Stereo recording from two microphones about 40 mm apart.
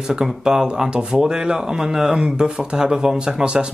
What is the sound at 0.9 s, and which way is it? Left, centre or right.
Speech, right.